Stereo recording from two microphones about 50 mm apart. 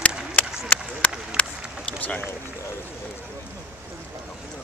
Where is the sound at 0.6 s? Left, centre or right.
Left.